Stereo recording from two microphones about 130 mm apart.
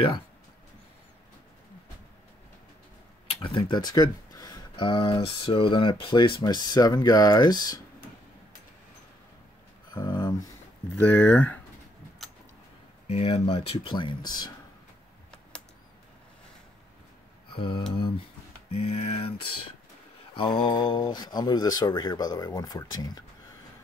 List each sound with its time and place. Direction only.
3.4 s speech: 35° left (ahead or behind)
6.4 s speech: 30° left (ahead or behind)
9.9 s speech: 30° left (ahead or behind)
11.0 s speech: 10° left (ahead or behind)
13.1 s speech: 50° left (ahead or behind); by 14.5 s 30° left (ahead or behind)
17.6 s speech: 40° left (ahead or behind)
18.7 s a sound: 45° left (ahead or behind)
20.3 s speech: 40° left (ahead or behind)